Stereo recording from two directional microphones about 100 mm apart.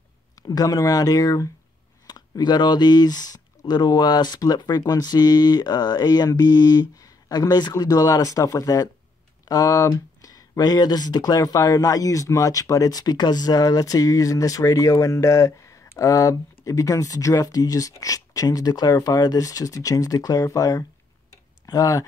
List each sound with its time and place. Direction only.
0.4 s speech: 40° left (ahead or behind)
21.3 s tick-tock: 35° left (ahead or behind)